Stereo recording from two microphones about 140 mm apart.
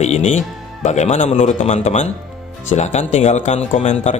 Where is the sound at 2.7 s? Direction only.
55° left (ahead or behind).